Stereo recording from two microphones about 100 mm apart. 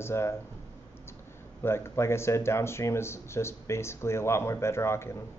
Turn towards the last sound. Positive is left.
turn(degrees=25)  # may be behind; listen again after turning